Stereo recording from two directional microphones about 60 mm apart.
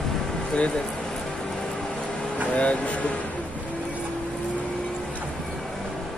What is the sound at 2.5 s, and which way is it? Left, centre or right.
Speech, left.